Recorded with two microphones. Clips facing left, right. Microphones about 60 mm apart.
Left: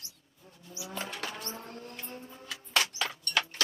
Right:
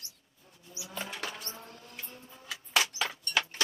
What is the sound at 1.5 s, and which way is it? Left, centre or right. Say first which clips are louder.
Vehicle: left 5 dB; left.